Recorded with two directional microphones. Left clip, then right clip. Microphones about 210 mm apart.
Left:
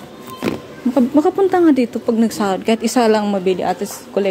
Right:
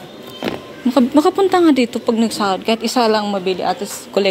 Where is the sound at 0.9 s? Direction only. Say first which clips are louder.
Right 1 dB; 10° left (ahead or behind); by 3.7 s 25° left (ahead or behind).